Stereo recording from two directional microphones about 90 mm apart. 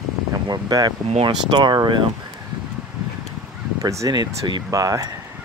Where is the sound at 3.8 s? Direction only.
40° right (ahead or behind).